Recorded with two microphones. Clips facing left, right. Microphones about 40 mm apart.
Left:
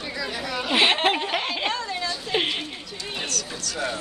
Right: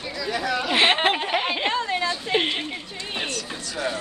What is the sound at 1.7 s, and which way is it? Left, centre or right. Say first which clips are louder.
Speech: right 4 dB; right.